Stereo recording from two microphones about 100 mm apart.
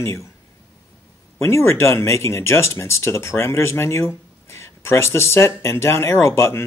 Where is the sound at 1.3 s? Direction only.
25° left (ahead or behind).